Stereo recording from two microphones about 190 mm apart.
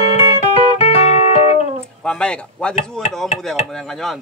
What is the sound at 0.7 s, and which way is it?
Music, 35° left (ahead or behind).